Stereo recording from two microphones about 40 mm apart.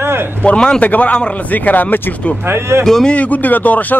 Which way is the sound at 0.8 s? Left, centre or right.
Left.